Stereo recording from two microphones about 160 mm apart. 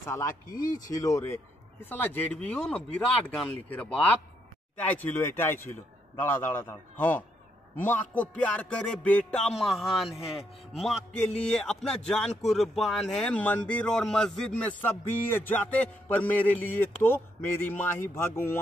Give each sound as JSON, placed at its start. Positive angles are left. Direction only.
{"t": 0.0, "sound": "speech", "side_deg": 20}